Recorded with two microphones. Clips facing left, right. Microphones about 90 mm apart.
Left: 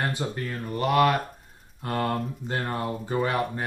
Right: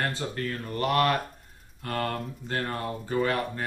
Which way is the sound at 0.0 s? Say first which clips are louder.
Left 1 dB; 15° left (ahead or behind).